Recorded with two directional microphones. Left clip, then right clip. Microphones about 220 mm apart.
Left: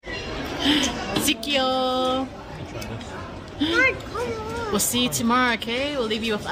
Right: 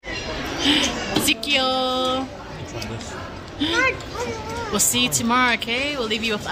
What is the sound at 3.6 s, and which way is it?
A woman's voice, 25° left (ahead or behind).